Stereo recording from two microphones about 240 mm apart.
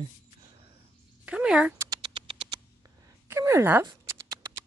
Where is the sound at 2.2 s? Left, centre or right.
Right.